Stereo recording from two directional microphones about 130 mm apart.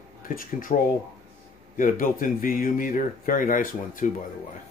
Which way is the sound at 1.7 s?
90° left.